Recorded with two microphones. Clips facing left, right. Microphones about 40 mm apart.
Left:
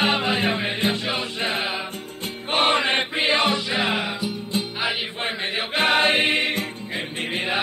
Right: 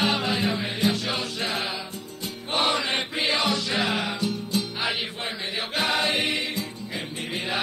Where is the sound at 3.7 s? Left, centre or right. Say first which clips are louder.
Left 2 dB; centre.